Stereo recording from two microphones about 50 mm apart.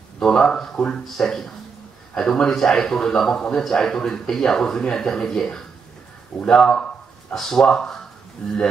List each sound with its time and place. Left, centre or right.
0.2 s a man's voice: centre
8.4 s speech: left